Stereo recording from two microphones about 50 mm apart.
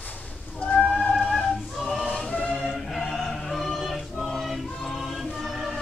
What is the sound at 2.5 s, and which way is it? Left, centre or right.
Choir, centre.